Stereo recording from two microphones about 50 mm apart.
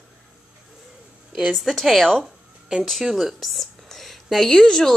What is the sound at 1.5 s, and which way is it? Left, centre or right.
Speech, centre.